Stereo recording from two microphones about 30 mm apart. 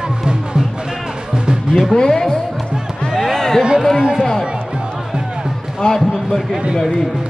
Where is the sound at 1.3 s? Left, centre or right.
Right.